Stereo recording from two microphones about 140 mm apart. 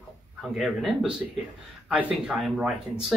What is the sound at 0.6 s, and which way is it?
Speech, centre (ahead or behind).